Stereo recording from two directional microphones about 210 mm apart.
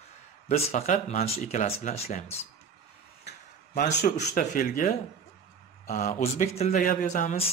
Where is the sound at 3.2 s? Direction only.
45° left (ahead or behind).